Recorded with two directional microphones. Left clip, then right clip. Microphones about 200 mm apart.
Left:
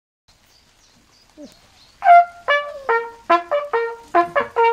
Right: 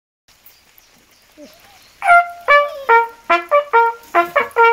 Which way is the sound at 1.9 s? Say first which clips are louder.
Left 1 dB; 25° left (ahead or behind).